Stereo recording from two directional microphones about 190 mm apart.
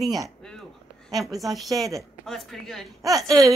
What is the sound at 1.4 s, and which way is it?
A woman's voice, centre (ahead or behind).